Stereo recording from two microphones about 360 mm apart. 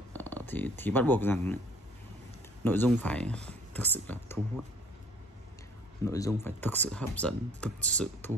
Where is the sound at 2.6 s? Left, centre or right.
Centre.